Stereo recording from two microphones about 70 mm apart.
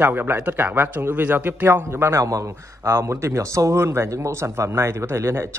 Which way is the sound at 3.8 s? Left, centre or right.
Right.